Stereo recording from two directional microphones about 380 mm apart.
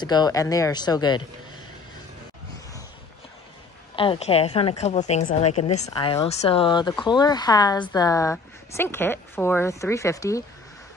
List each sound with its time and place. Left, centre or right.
0.0 s a woman's voice: centre
3.9 s a woman's voice: centre